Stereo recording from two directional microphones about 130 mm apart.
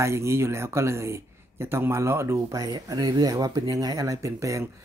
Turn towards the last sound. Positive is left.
turn(degrees=-25)  # may be behind; listen again after turning